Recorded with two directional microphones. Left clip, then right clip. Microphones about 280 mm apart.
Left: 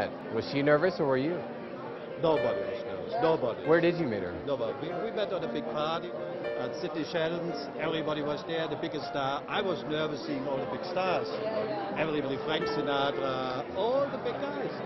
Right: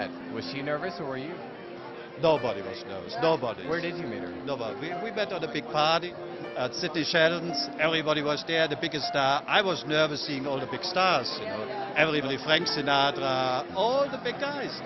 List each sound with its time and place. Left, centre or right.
0.6 s speech: centre
2.2 s a man's voice: right
5.1 s a man's voice: right
5.5 s a man's voice: right